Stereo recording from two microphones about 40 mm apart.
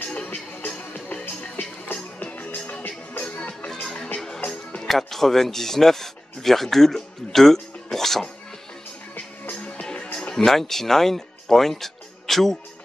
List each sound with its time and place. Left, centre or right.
0.0 s music: left
2.3 s music: left
3.2 s music: left
4.8 s speech: centre
7.5 s a sound: centre
9.1 s music: left
9.6 s music: left
10.3 s speech: centre